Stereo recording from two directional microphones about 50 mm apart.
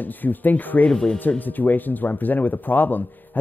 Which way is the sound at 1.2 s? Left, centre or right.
Left.